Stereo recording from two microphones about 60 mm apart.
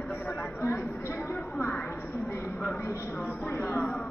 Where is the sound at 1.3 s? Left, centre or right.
Left.